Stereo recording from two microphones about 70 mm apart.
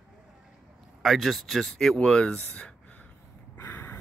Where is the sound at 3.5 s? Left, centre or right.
Left.